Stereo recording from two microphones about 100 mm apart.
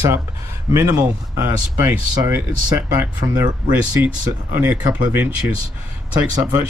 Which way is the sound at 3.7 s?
20° right (ahead or behind).